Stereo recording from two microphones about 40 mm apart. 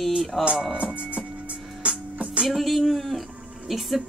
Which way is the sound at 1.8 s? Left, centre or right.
Right.